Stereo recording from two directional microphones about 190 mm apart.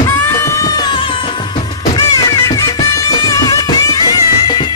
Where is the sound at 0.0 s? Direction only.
15° left (ahead or behind).